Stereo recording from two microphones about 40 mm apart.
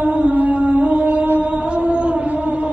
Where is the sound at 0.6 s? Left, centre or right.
Right.